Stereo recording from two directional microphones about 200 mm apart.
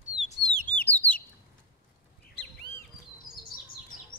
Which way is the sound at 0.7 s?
10° left (ahead or behind).